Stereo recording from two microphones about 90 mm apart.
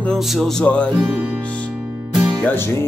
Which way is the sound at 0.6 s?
15° left (ahead or behind).